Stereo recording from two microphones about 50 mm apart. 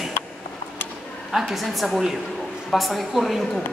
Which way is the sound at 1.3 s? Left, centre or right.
Centre.